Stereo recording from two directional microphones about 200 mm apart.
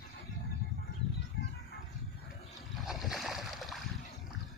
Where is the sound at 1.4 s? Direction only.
55° left (ahead or behind).